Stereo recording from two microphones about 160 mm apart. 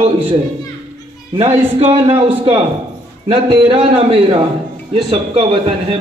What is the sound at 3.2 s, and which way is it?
A man's voice, 35° right (ahead or behind).